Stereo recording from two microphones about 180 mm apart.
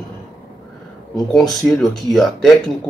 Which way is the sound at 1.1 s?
Centre (ahead or behind).